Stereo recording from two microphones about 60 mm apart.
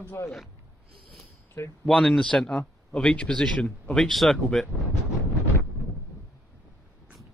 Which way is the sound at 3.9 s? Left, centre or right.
Centre.